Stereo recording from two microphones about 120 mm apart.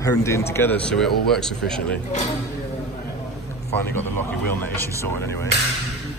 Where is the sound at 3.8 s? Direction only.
15° left (ahead or behind).